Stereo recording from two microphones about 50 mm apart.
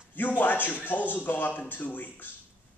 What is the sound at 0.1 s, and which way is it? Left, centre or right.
A man's voice, left.